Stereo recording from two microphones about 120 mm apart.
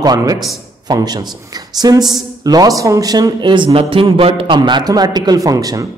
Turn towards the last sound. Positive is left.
turn(degrees=-30)  # may be behind; listen again after turning